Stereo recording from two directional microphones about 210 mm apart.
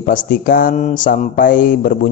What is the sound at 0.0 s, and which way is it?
Speech, 40° left (ahead or behind).